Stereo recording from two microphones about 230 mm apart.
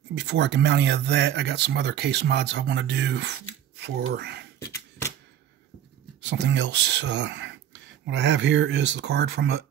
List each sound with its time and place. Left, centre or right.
0.1 s speech: right
4.6 s a sound: centre
6.2 s speech: right